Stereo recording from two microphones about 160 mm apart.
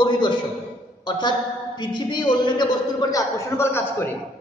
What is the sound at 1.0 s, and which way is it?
A woman's voice, 25° left (ahead or behind).